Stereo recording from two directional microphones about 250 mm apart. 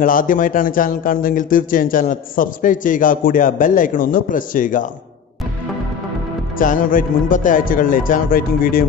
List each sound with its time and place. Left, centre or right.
0.0 s speech: left
6.6 s speech: left